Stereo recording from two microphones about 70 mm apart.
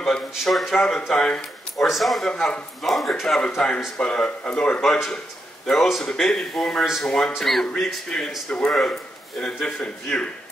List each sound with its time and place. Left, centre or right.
0.3 s speech: centre
1.9 s speech: centre
4.8 s speech: centre